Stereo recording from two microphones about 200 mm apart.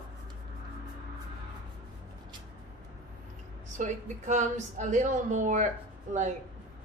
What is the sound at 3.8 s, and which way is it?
A woman's voice, 40° right (ahead or behind).